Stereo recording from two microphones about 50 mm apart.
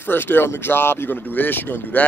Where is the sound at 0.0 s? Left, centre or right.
Left.